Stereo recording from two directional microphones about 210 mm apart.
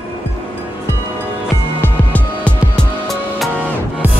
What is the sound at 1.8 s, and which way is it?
Music, 5° left (ahead or behind).